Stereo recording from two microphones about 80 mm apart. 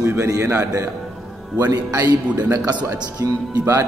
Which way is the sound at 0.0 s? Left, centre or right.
Right.